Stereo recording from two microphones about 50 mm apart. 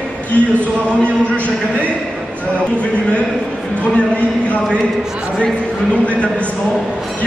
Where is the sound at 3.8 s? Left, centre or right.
Left.